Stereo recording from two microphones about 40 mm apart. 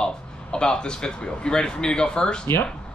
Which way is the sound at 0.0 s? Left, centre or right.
Left.